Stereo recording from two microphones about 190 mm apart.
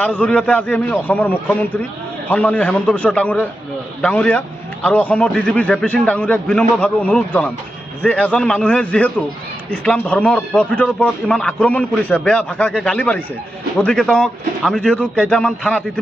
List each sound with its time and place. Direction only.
0.0 s a man's voice: 10° left (ahead or behind)